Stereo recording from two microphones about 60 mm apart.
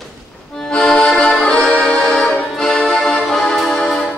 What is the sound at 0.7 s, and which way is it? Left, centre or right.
Accordion, centre.